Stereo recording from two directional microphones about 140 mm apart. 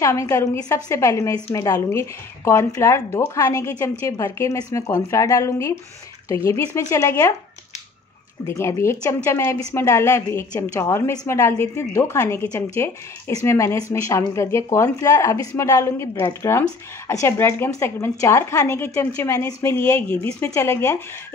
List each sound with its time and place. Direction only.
0.0 s a woman's voice: 20° left (ahead or behind)
8.5 s a woman's voice: 20° left (ahead or behind)